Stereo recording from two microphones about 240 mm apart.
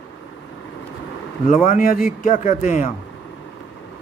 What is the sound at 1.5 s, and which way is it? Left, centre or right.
A man's voice, left.